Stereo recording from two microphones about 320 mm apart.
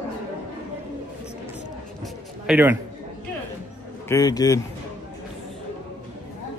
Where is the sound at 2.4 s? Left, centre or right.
Centre.